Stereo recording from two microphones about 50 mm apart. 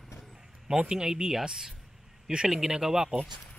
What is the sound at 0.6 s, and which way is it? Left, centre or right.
Speech, centre.